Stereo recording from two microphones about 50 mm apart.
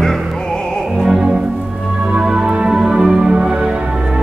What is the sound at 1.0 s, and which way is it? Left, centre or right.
Music, centre.